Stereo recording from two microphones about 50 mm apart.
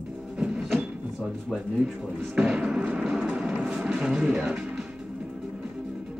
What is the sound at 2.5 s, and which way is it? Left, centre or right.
Speech, centre.